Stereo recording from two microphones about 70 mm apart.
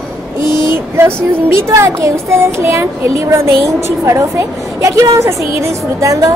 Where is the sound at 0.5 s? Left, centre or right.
Right.